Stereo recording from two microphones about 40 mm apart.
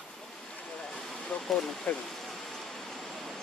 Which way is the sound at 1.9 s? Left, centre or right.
Left.